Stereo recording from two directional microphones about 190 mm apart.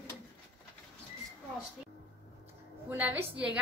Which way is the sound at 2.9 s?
10° right (ahead or behind).